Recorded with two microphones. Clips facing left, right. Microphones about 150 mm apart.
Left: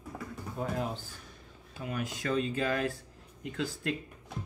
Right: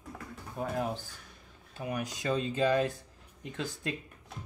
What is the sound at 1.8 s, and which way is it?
Speech, 15° right (ahead or behind).